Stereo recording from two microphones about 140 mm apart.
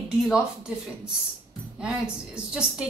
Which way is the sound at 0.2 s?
5° right (ahead or behind).